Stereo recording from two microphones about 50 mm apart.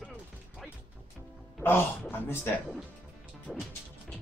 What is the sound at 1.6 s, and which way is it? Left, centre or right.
Speech, left.